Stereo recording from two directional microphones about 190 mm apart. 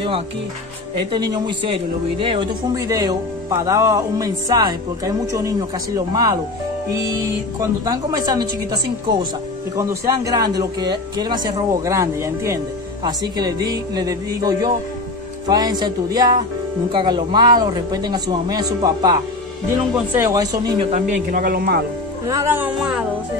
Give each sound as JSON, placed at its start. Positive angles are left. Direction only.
{"t": 1.1, "sound": "speech", "side_deg": -25}
{"t": 7.8, "sound": "speech", "side_deg": -20}
{"t": 9.8, "sound": "speech", "side_deg": -15}
{"t": 20.2, "sound": "speech", "side_deg": -15}
{"t": 20.9, "sound": "speech", "side_deg": -45}
{"t": 22.2, "sound": "speech", "side_deg": -15}